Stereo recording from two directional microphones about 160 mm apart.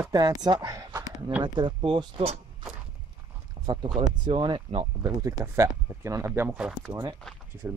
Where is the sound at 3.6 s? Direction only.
25° right (ahead or behind).